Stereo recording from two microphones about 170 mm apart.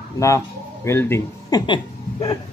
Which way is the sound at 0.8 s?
15° left (ahead or behind).